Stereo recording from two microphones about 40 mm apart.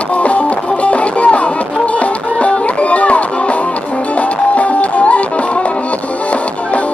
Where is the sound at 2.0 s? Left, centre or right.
Left.